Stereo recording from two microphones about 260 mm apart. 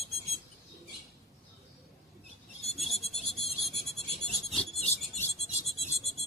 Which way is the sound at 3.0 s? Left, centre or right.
Left.